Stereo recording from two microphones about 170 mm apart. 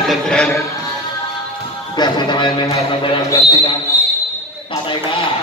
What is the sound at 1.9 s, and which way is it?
Speech, 25° left (ahead or behind).